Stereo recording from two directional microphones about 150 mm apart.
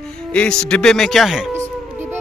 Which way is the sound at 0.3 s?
5° left (ahead or behind).